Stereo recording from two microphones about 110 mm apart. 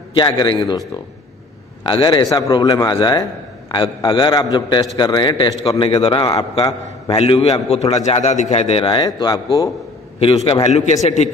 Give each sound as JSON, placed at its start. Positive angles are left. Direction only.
{"t": 0.1, "sound": "a man's voice", "side_deg": 45}
{"t": 5.7, "sound": "a man's voice", "side_deg": 65}
{"t": 6.5, "sound": "a man's voice", "side_deg": 65}
{"t": 7.7, "sound": "a man's voice", "side_deg": 80}
{"t": 9.0, "sound": "speech", "side_deg": 35}
{"t": 10.1, "sound": "a man's voice", "side_deg": 65}